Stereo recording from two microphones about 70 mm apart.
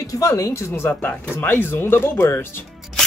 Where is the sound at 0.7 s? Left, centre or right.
Left.